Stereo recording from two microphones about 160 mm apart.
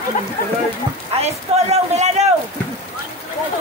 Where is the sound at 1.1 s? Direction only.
40° right (ahead or behind).